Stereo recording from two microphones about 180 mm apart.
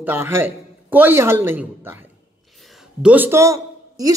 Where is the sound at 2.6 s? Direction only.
Centre (ahead or behind); by 4.1 s 20° right (ahead or behind).